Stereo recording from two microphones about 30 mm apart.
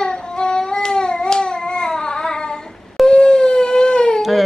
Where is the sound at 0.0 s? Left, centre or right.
Left.